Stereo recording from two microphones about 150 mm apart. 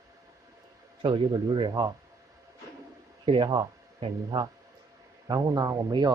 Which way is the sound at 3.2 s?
35° right (ahead or behind).